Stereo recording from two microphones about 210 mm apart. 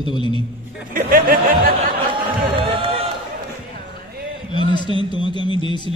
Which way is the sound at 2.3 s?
25° right (ahead or behind).